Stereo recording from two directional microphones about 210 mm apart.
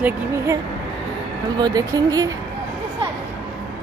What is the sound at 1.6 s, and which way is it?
Speech, 15° right (ahead or behind).